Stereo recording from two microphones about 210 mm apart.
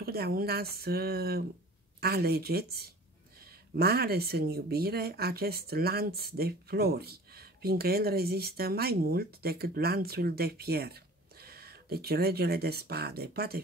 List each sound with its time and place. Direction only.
0.0 s speech: 45° right (ahead or behind)